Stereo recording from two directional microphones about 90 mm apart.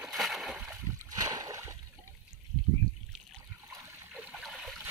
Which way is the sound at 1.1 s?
45° right (ahead or behind).